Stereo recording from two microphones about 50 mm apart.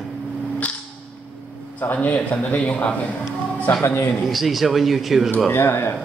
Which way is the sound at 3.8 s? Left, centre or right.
Left.